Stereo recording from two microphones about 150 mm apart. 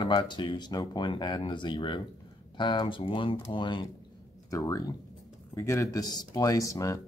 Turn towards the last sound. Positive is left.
turn(degrees=20)  # may be behind; listen again after turning